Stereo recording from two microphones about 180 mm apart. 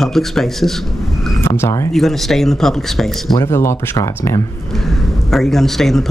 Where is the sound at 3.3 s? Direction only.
15° left (ahead or behind).